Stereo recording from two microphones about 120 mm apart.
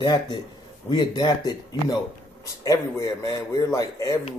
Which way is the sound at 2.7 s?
25° left (ahead or behind).